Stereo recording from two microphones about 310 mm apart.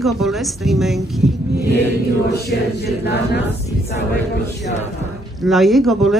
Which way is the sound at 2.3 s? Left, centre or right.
Left.